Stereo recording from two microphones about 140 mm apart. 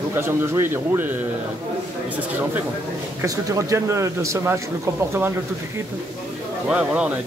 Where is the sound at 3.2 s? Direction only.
20° right (ahead or behind).